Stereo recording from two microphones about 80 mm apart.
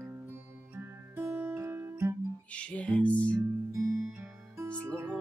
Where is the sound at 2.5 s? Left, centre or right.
Centre.